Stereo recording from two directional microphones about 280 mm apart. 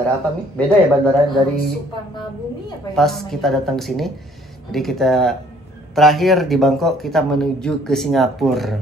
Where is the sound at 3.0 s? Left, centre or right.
Centre.